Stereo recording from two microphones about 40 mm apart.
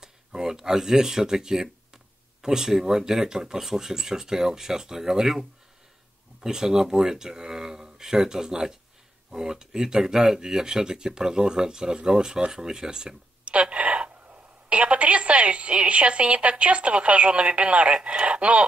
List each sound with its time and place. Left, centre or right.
0.0 s speech: centre
13.5 s a woman's voice: right